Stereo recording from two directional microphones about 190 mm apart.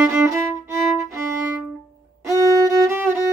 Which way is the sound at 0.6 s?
15° right (ahead or behind).